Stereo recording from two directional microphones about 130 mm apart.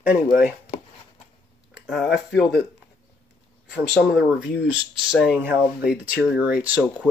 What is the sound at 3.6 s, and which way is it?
Speech, 5° right (ahead or behind).